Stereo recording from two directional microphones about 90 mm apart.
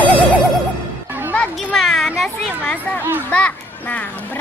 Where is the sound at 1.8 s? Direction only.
Centre (ahead or behind).